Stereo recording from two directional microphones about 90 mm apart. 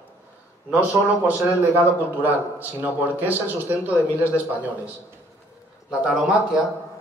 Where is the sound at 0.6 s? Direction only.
15° right (ahead or behind).